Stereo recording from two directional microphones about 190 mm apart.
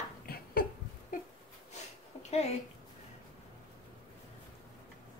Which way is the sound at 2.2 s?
35° left (ahead or behind).